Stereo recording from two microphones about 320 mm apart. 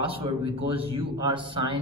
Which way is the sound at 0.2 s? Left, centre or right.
Centre.